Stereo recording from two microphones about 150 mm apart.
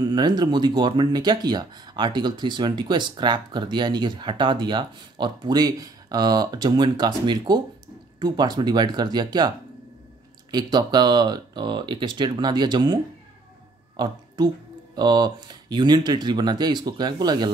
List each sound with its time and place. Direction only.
0.0 s speech: 30° right (ahead or behind)
10.5 s speech: 30° right (ahead or behind)